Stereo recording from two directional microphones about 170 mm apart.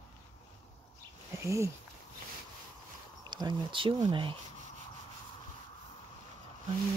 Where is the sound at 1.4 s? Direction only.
15° right (ahead or behind).